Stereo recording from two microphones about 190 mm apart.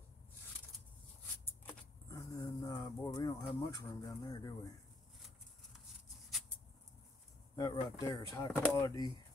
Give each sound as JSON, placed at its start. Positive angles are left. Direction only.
{"t": 1.7, "sound": "vehicle", "side_deg": 15}
{"t": 7.5, "sound": "speech", "side_deg": 20}